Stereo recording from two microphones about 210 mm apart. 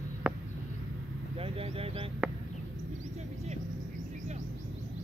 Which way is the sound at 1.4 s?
25° right (ahead or behind).